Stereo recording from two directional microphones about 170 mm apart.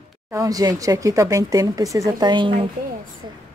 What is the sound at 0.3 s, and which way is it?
Speech, 20° right (ahead or behind).